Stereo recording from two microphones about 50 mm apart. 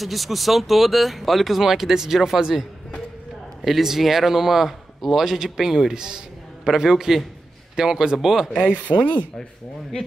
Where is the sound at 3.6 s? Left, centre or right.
Centre.